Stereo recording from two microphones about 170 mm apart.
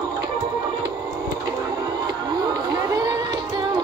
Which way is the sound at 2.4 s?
25° right (ahead or behind).